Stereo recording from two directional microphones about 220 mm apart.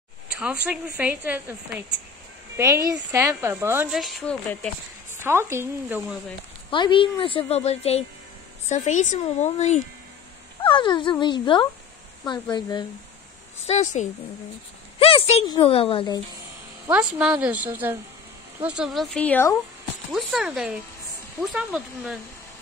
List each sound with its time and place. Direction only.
0.7 s a woman's voice: 5° right (ahead or behind)
5.2 s a woman's voice: 10° right (ahead or behind)
6.7 s a woman's voice: 20° left (ahead or behind)
13.7 s a woman's voice: 30° left (ahead or behind)
16.9 s a woman's voice: 5° right (ahead or behind)